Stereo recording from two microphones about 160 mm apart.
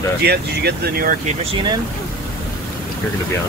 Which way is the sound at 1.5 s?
30° right (ahead or behind).